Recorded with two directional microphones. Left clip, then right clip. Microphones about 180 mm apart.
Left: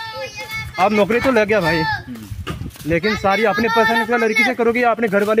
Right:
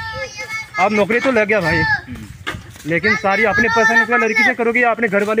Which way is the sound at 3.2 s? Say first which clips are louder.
Right 2 dB; 5° left (ahead or behind).